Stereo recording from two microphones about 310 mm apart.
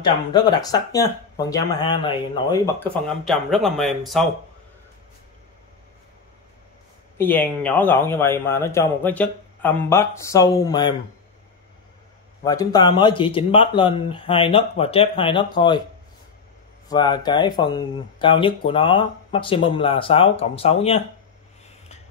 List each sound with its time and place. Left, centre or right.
0.0 s speech: centre
7.2 s speech: centre
12.4 s speech: centre
16.9 s speech: centre